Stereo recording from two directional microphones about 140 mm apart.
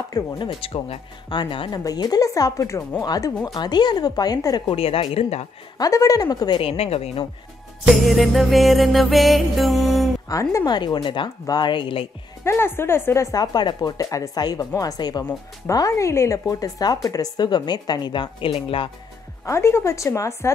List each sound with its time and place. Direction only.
0.1 s speech: 25° left (ahead or behind)
0.5 s speech: 40° left (ahead or behind)
5.8 s speech: 25° left (ahead or behind)
6.6 s speech: 45° left (ahead or behind)
7.9 s music: centre (ahead or behind)
10.2 s speech: 25° left (ahead or behind)
12.4 s speech: 15° left (ahead or behind); by 18.9 s 40° left (ahead or behind)
19.4 s speech: 20° left (ahead or behind)